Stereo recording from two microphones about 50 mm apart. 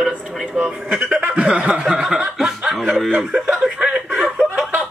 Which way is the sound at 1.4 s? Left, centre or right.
Right.